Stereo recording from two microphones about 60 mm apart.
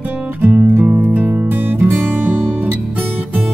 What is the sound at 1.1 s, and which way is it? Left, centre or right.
Guitar, right.